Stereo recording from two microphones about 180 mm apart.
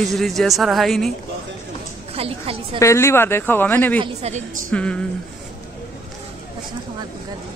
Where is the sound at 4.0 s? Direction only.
35° right (ahead or behind).